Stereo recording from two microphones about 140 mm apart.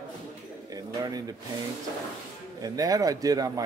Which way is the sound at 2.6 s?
25° right (ahead or behind).